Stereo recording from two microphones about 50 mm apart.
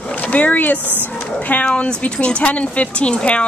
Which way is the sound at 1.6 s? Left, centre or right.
Centre.